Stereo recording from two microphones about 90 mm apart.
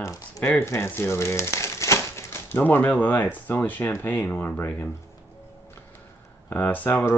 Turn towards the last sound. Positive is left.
turn(degrees=20)  # may be behind; listen again after turning